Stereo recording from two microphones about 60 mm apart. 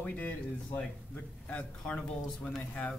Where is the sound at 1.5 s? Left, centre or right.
Centre.